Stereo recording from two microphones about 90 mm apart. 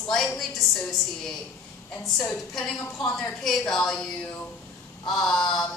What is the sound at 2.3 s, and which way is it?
A woman's voice, 5° left (ahead or behind).